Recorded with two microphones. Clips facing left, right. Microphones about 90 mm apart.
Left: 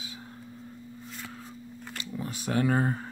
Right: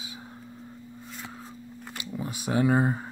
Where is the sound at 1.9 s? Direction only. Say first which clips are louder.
Right 1 dB; 15° right (ahead or behind).